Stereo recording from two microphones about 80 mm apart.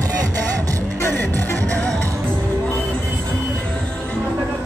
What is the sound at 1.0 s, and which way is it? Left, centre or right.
Music, left.